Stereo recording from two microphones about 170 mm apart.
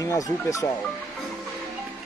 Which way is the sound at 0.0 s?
20° left (ahead or behind).